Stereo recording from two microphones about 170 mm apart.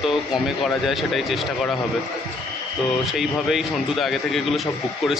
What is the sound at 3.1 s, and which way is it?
Speech, centre (ahead or behind).